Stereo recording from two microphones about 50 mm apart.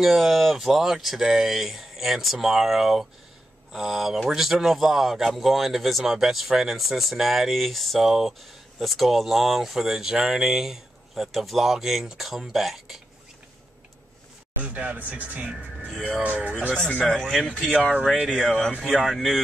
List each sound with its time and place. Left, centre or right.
0.0 s speech: centre
14.6 s speech: right
17.1 s speech: centre
17.5 s speech: centre
18.2 s speech: centre